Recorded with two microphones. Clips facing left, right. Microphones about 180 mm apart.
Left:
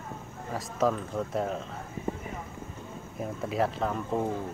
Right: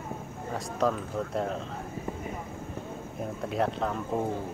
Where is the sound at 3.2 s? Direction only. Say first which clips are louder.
Even; centre (ahead or behind).